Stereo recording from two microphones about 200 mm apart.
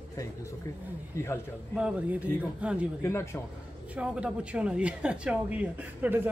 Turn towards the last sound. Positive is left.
turn(degrees=-10)  # may be behind; listen again after turning